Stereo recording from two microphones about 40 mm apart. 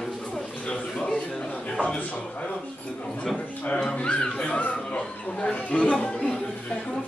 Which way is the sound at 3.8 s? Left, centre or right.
Left.